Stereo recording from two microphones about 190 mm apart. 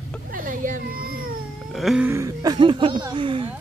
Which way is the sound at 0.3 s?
45° right (ahead or behind).